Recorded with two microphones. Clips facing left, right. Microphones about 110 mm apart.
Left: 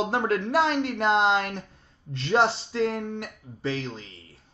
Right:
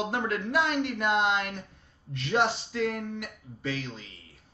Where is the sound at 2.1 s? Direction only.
30° left (ahead or behind).